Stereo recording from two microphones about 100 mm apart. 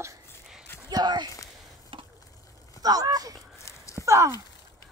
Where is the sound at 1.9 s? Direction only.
60° right (ahead or behind).